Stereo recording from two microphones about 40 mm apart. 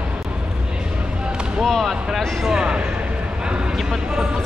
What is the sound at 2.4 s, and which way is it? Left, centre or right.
Speech, centre.